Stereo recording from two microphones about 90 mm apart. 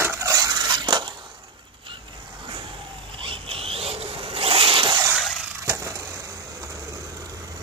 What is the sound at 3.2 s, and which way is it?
Zipper, 85° right.